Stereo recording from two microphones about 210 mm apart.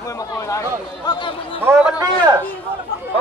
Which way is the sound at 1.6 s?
5° right (ahead or behind).